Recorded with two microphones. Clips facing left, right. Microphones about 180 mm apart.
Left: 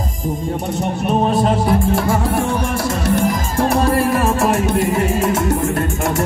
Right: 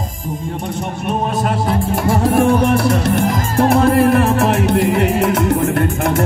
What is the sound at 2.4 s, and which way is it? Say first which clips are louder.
Music: right 6 dB; 60° right (ahead or behind).